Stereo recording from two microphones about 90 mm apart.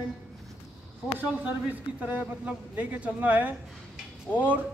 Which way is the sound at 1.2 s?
15° right (ahead or behind).